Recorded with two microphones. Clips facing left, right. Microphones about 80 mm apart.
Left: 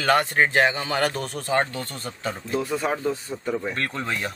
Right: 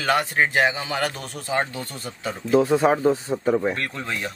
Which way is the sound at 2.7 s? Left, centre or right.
Centre.